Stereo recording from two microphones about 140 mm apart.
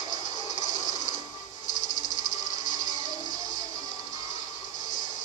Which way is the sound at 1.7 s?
60° left (ahead or behind).